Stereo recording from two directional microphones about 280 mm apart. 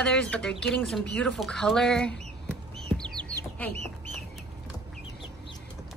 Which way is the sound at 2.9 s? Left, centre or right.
Centre.